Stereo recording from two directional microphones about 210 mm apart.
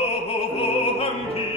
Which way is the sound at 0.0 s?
30° left (ahead or behind).